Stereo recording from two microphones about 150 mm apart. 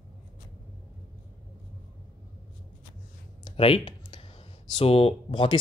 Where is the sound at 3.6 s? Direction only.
40° left (ahead or behind).